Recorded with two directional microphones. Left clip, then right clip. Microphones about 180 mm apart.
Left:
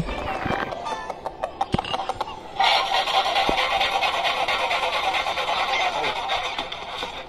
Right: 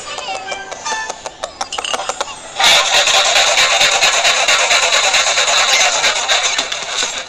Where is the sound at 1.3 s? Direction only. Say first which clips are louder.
Right 3 dB; 20° right (ahead or behind).